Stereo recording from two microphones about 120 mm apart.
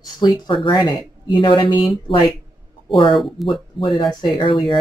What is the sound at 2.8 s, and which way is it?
Speech, 45° left (ahead or behind).